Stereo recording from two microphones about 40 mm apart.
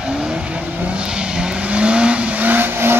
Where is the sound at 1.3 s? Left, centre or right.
Right.